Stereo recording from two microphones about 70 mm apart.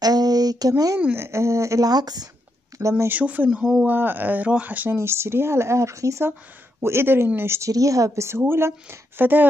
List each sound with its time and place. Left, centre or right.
0.0 s a sound: right
1.1 s speech: right
1.9 s speech: right
2.8 s speech: right
3.1 s speech: right
3.4 s speech: centre
3.8 s speech: right
4.9 s speech: right
6.8 s speech: right
7.7 s speech: right
8.3 s speech: right